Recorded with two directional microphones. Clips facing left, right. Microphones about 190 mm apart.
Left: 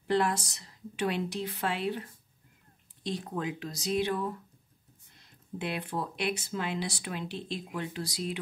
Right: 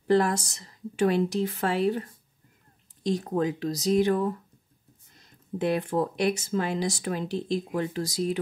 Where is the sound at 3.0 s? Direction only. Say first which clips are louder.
Right 8 dB; 45° right (ahead or behind).